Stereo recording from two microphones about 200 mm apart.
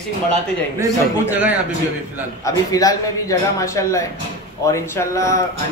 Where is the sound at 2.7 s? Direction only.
15° left (ahead or behind).